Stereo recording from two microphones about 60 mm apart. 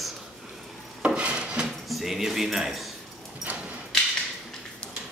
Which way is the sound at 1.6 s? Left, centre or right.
Centre.